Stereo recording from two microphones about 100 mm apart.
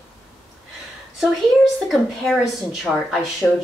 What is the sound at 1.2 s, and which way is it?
A woman's voice, centre (ahead or behind).